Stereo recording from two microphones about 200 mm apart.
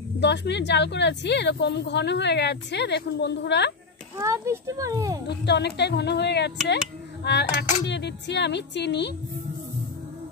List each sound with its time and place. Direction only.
0.2 s a woman's voice: 60° left (ahead or behind)
4.2 s speech: 15° right (ahead or behind)
5.3 s a woman's voice: 60° left (ahead or behind)